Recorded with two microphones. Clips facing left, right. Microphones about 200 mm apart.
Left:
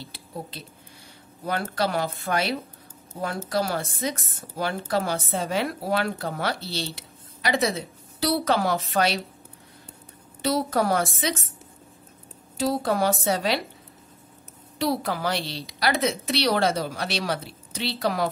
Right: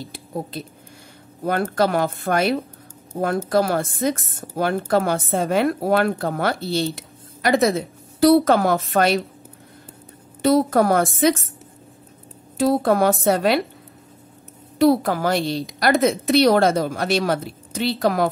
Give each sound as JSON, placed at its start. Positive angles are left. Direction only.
{"t": 0.0, "sound": "a woman's voice", "side_deg": -50}
{"t": 10.4, "sound": "a woman's voice", "side_deg": -50}
{"t": 12.5, "sound": "a woman's voice", "side_deg": -55}
{"t": 14.8, "sound": "a woman's voice", "side_deg": -50}